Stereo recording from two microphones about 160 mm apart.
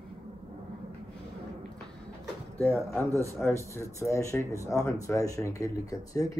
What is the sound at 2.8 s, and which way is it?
Speech, 15° left (ahead or behind).